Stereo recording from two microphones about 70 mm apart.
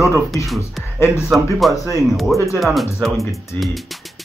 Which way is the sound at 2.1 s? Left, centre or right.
Centre.